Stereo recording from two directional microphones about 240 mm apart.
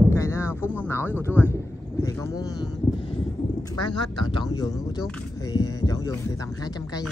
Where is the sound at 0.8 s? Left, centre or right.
Centre.